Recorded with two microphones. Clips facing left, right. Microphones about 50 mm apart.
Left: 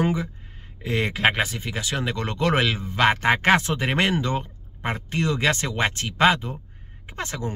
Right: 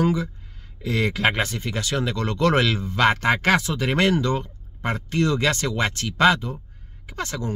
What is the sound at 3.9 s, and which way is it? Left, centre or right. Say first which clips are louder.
Speech: right 3 dB; left.